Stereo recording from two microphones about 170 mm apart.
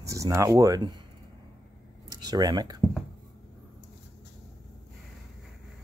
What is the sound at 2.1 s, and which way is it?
Speech, 25° right (ahead or behind).